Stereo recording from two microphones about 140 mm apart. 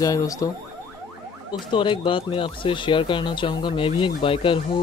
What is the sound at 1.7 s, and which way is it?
Speech, 35° left (ahead or behind).